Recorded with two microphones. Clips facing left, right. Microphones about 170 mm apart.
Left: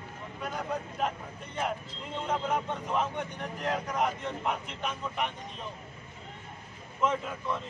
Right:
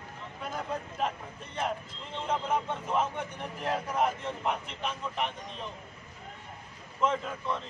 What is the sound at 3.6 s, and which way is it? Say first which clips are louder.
A man's voice: right 1 dB; 5° right (ahead or behind).